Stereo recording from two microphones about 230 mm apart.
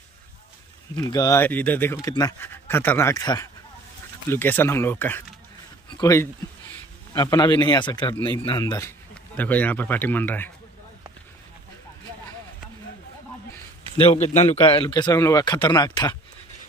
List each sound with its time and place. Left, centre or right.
1.0 s speech: centre
14.1 s speech: left